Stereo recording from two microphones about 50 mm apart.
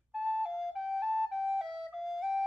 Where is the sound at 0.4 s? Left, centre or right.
Centre.